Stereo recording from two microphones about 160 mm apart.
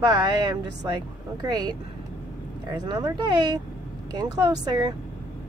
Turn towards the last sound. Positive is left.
turn(degrees=-25)  # may be behind; listen again after turning